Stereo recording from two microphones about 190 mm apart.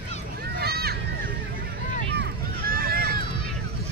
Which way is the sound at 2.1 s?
55° right (ahead or behind).